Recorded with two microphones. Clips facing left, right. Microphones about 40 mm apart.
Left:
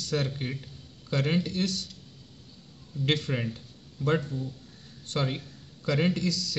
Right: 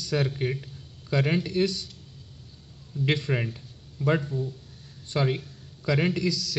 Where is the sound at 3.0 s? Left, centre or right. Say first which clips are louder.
Right 2 dB; right.